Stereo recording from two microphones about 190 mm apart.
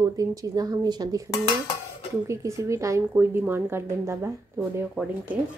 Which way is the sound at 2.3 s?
15° right (ahead or behind).